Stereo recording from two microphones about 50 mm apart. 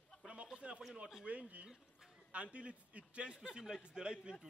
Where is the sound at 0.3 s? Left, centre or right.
Right.